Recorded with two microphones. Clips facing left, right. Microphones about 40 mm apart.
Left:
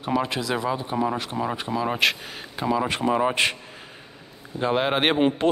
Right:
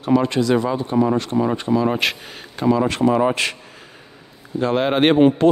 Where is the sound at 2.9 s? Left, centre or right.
Centre.